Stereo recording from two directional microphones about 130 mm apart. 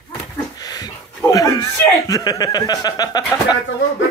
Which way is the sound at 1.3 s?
25° left (ahead or behind).